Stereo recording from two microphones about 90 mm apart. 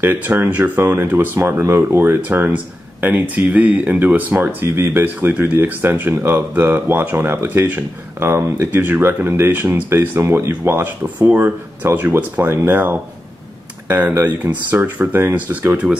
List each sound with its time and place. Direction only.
0.0 s speech: 20° right (ahead or behind)